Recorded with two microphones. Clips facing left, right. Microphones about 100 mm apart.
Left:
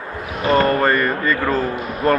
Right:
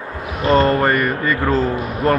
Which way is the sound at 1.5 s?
25° right (ahead or behind).